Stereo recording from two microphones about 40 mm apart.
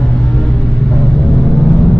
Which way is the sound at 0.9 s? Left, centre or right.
Left.